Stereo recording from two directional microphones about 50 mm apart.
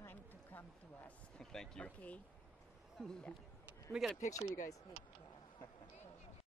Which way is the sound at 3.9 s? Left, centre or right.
Centre.